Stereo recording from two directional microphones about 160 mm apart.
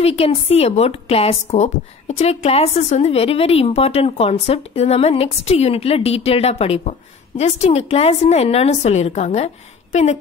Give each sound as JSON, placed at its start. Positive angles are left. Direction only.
{"t": 0.0, "sound": "a woman's voice", "side_deg": 40}